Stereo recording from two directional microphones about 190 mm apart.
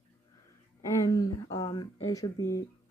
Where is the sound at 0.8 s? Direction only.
20° left (ahead or behind).